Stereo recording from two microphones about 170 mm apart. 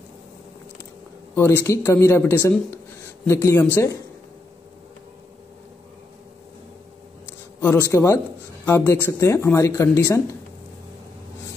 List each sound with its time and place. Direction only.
1.3 s speech: 10° left (ahead or behind)
7.6 s speech: 15° left (ahead or behind)